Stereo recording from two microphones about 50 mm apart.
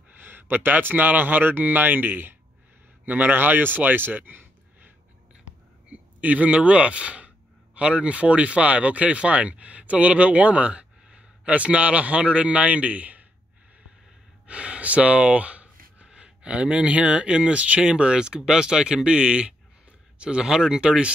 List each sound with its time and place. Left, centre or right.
0.2 s speech: right
5.9 s speech: right
14.4 s speech: right
17.8 s speech: centre